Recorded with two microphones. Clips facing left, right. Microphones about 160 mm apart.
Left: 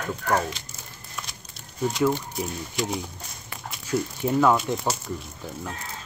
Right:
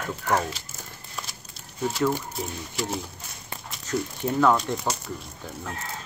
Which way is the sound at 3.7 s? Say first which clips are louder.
Left 2 dB; 10° left (ahead or behind).